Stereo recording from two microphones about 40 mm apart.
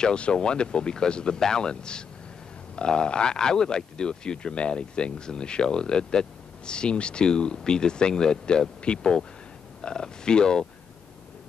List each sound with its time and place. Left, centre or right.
0.0 s speech: left